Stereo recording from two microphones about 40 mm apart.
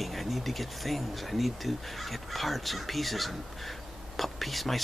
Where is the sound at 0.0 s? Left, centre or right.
Centre.